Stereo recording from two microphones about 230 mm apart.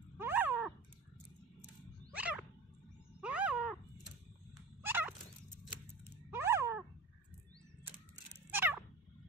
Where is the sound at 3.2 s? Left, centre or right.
Centre.